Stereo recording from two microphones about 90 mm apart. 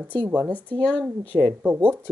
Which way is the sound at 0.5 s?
15° left (ahead or behind).